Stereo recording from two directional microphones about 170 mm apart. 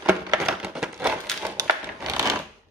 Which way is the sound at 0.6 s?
5° right (ahead or behind).